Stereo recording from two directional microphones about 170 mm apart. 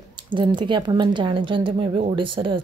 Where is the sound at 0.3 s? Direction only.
30° right (ahead or behind).